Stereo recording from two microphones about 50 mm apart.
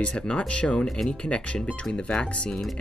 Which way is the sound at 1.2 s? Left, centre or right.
Left.